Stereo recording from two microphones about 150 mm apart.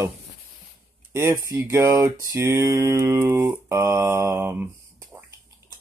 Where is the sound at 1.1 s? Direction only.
20° right (ahead or behind).